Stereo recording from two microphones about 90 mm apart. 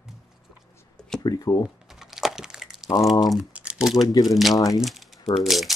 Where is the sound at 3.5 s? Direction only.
10° right (ahead or behind).